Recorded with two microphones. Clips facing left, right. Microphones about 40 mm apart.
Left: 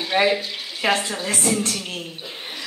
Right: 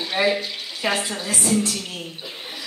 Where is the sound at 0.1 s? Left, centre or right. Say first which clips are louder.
Left 2 dB; left.